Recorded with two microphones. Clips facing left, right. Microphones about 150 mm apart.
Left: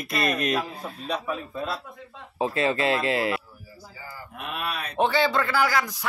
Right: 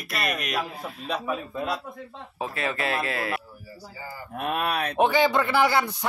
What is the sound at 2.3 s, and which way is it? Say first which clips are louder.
Speech: left 5 dB; 25° left (ahead or behind).